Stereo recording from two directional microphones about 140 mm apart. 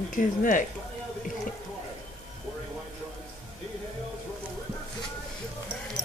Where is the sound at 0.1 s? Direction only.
70° left (ahead or behind).